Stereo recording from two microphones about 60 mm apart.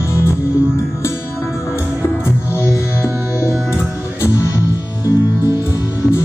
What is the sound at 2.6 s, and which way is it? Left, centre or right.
Music, left.